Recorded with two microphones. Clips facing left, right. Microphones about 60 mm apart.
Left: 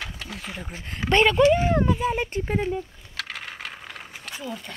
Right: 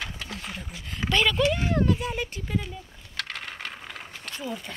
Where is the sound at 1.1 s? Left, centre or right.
Left.